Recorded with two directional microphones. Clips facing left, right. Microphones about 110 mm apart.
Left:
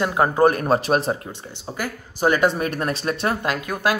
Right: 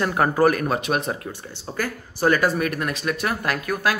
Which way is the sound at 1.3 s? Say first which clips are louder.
Right 1 dB; 20° left (ahead or behind).